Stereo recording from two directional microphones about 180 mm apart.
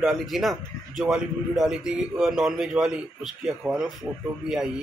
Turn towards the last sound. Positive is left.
turn(degrees=-5)  # may be behind; listen again after turning